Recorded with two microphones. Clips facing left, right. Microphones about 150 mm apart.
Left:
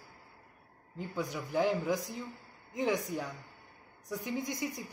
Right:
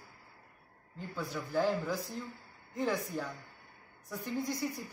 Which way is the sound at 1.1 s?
15° left (ahead or behind).